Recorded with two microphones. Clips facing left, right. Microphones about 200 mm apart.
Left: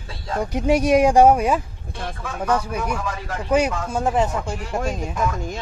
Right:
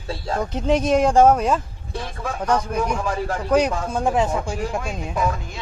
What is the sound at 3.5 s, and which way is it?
Speech, 5° left (ahead or behind).